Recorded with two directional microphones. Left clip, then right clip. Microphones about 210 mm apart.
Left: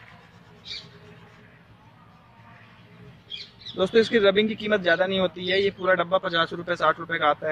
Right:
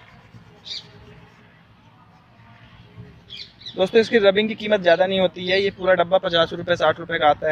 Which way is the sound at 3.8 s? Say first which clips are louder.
Right 3 dB; 10° right (ahead or behind).